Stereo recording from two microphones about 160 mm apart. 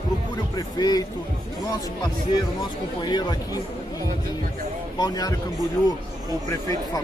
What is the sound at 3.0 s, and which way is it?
Speech, 25° left (ahead or behind).